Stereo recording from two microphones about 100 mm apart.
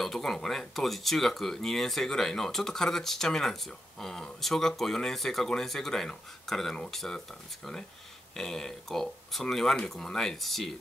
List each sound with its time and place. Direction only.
0.0 s speech: 5° left (ahead or behind)
8.4 s speech: 5° left (ahead or behind)